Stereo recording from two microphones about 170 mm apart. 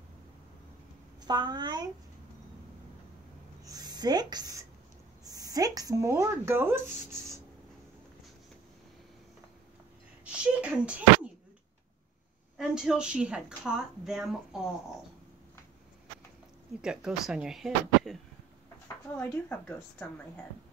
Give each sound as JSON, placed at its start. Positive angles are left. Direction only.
{"t": 1.2, "sound": "a child's voice", "side_deg": -25}
{"t": 3.6, "sound": "speech", "side_deg": -25}
{"t": 10.2, "sound": "speech", "side_deg": -5}
{"t": 12.5, "sound": "a woman's voice", "side_deg": -5}
{"t": 16.8, "sound": "a woman's voice", "side_deg": -5}
{"t": 19.1, "sound": "speech", "side_deg": 10}